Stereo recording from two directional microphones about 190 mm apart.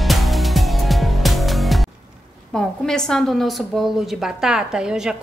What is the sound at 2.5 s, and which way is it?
A woman's voice, 5° left (ahead or behind).